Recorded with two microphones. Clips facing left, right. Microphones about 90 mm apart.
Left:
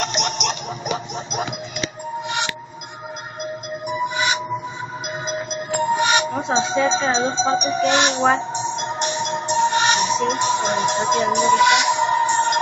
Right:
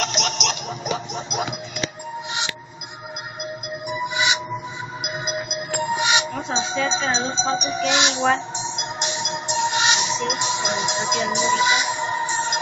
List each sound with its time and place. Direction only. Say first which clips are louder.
2.2 s music: left 5 dB; 55° left (ahead or behind)
3.8 s music: left 2 dB; 45° left (ahead or behind)
6.5 s speech: left 5 dB; 40° left (ahead or behind)
8.5 s music: left 5 dB; 45° left (ahead or behind); by 12.5 s 60° left (ahead or behind)